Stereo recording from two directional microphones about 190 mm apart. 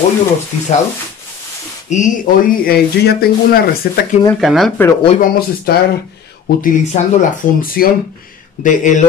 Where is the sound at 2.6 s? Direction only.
55° left (ahead or behind).